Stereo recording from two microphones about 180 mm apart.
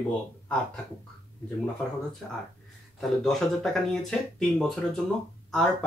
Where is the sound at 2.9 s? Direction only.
Centre (ahead or behind).